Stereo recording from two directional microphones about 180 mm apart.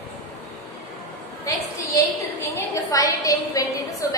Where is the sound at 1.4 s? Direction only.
20° left (ahead or behind).